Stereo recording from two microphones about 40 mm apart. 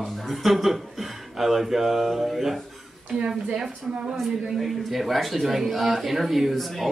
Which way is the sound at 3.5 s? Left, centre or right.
Right.